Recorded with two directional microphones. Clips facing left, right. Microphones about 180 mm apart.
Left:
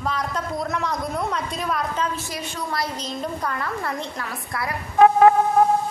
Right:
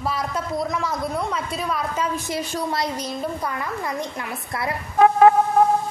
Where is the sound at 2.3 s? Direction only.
25° right (ahead or behind).